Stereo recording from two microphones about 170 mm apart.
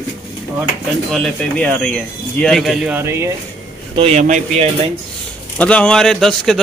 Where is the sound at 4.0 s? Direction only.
40° right (ahead or behind).